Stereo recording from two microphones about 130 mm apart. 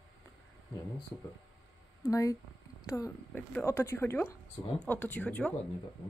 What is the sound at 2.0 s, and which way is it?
Speech, 25° left (ahead or behind).